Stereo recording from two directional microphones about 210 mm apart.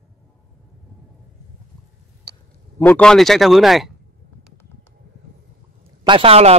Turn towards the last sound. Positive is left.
turn(degrees=-30)  # may be behind; listen again after turning